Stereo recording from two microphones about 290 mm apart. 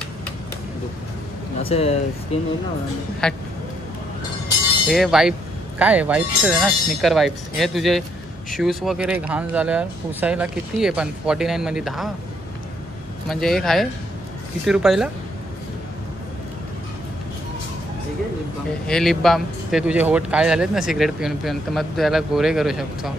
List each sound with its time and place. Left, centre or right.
1.6 s speech: left
3.2 s speech: centre
4.8 s speech: centre
13.3 s speech: centre
18.9 s speech: centre